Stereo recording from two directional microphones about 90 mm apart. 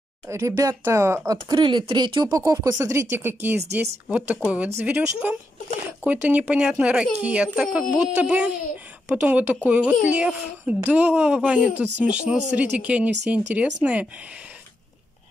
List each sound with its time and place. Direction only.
0.3 s speech: 35° right (ahead or behind)
1.5 s speech: 60° right (ahead or behind)
2.3 s speech: 40° right (ahead or behind); by 13.7 s 10° right (ahead or behind)